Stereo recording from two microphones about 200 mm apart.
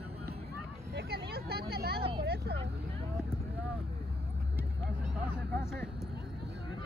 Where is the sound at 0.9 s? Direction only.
55° right (ahead or behind).